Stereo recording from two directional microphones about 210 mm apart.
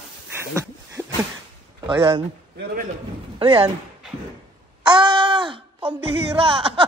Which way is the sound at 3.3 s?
25° right (ahead or behind).